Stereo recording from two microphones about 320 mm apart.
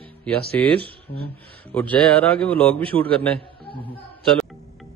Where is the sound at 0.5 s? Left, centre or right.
Centre.